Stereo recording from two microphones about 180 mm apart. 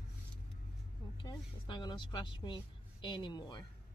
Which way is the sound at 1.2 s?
20° left (ahead or behind).